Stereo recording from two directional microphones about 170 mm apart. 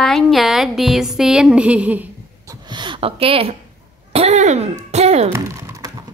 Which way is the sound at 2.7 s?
30° right (ahead or behind).